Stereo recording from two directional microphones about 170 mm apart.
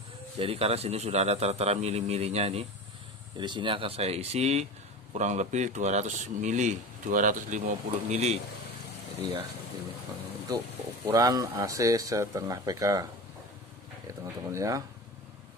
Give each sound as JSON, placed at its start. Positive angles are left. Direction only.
{"t": 0.4, "sound": "a man's voice", "side_deg": -35}
{"t": 3.3, "sound": "a man's voice", "side_deg": -30}
{"t": 11.1, "sound": "speech", "side_deg": -20}
{"t": 14.2, "sound": "a sound", "side_deg": -15}